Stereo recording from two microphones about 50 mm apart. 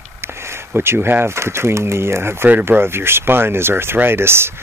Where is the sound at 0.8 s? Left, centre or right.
Right.